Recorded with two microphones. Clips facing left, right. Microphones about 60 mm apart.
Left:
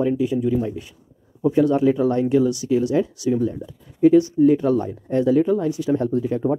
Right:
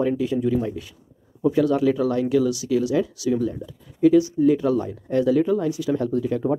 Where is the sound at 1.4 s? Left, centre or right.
Left.